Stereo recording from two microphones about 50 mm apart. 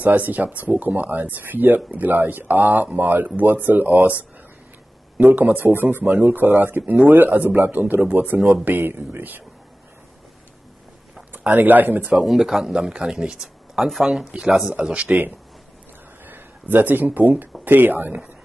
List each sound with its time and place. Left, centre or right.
0.0 s speech: right
11.3 s speech: right
12.3 s speech: centre
14.8 s speech: centre
15.0 s speech: right